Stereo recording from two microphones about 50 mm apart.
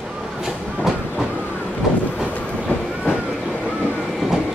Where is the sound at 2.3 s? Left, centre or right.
Left.